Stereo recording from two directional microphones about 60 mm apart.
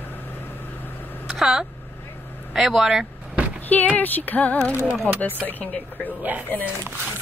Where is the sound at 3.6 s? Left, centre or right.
Left.